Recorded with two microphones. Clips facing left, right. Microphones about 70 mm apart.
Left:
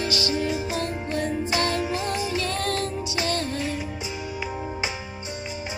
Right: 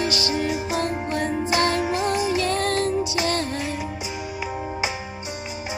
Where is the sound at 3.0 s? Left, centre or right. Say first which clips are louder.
Right 4 dB; centre.